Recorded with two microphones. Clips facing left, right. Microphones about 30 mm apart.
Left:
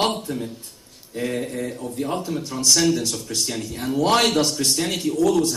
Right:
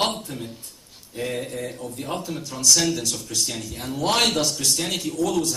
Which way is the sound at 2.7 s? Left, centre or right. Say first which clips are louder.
Left 2 dB; centre.